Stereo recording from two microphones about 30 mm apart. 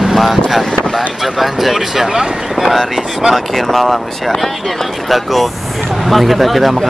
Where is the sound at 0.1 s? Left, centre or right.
Centre.